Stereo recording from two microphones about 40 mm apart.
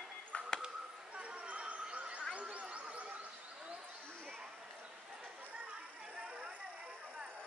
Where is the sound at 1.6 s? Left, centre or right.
Right.